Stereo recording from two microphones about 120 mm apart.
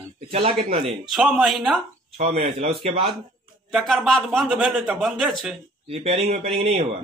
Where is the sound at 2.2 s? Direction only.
90° right.